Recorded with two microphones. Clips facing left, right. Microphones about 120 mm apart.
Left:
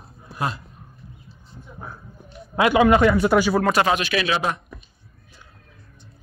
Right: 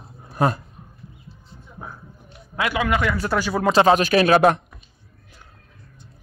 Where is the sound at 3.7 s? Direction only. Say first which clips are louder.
Right 5 dB; 35° right (ahead or behind).